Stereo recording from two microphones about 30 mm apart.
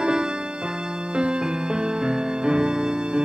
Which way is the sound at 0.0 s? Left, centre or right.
Right.